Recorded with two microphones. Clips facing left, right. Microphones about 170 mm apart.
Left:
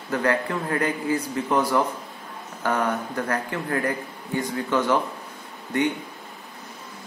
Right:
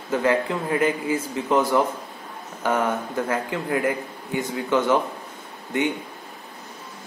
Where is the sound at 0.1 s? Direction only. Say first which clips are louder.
Right 2 dB; 20° right (ahead or behind).